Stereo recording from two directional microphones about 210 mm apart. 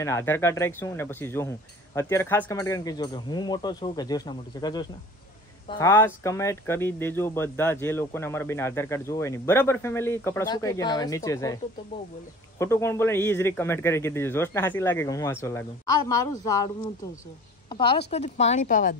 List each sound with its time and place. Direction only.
0.0 s speech: 10° left (ahead or behind)
12.5 s speech: 10° left (ahead or behind); by 18.9 s 40° left (ahead or behind)